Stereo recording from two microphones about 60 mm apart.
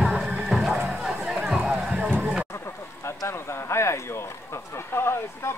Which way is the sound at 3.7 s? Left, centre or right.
Left.